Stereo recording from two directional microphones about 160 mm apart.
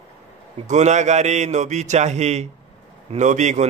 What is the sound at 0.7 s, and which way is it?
A man's voice, 45° right (ahead or behind).